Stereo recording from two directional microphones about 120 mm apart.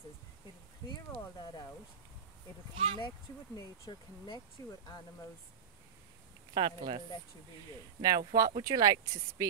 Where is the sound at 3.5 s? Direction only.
30° left (ahead or behind).